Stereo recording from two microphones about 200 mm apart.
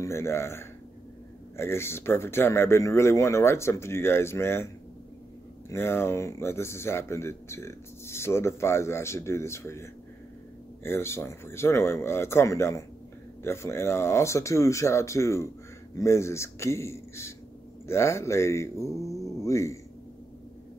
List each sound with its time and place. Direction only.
0.0 s speech: 15° left (ahead or behind)
5.7 s speech: 10° left (ahead or behind)
19.2 s a sound: 15° left (ahead or behind)